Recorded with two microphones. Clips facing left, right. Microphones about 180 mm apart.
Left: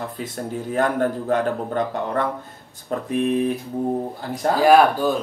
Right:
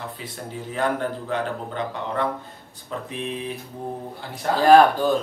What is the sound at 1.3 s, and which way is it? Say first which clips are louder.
Speech: left 6 dB; 45° left (ahead or behind).